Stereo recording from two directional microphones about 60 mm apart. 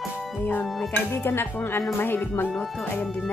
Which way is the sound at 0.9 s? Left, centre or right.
Left.